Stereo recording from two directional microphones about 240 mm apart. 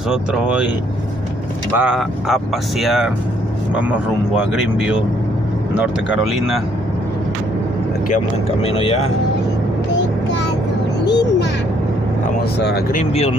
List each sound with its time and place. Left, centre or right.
0.1 s speech: centre
1.8 s speech: centre
4.5 s speech: centre
8.6 s speech: left
11.1 s a sound: left
12.5 s speech: left
13.0 s speech: left